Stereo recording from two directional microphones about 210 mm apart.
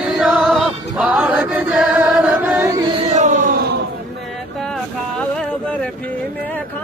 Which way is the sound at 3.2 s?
35° right (ahead or behind).